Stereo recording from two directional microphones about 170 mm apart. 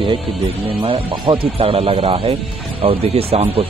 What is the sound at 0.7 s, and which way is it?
Speech, 35° right (ahead or behind).